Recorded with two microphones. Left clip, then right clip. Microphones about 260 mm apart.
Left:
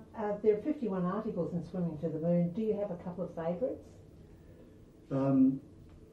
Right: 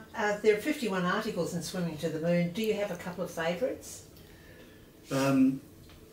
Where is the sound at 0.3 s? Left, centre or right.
Centre.